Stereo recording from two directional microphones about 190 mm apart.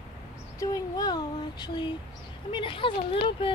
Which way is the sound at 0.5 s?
20° left (ahead or behind).